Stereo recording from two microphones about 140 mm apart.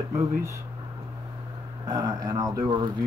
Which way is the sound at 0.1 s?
20° right (ahead or behind).